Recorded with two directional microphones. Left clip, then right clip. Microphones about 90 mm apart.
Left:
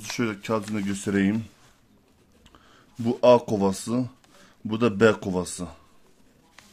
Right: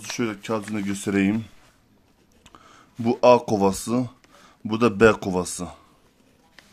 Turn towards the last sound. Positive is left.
turn(degrees=-30)  # may be behind; listen again after turning